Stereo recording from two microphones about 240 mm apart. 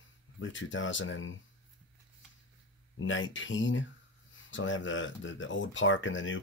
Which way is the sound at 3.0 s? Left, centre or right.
Left.